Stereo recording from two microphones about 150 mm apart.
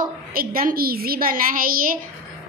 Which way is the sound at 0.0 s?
75° right (ahead or behind).